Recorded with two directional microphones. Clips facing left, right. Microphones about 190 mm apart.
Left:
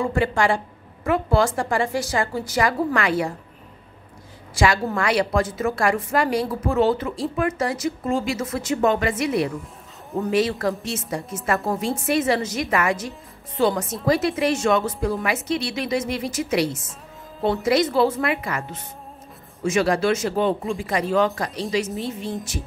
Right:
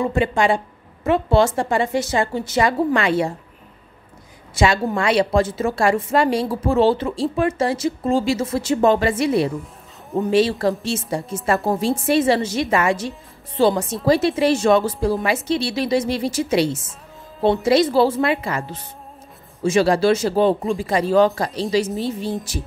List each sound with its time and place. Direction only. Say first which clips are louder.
0.0 s a woman's voice: right 2 dB; 20° right (ahead or behind)
4.6 s a woman's voice: right 2 dB; 25° right (ahead or behind)